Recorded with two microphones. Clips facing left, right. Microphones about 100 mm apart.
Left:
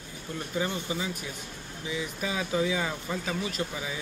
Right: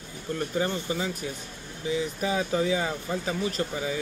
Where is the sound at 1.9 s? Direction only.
35° right (ahead or behind).